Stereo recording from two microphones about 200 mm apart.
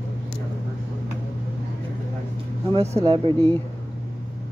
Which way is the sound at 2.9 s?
25° right (ahead or behind).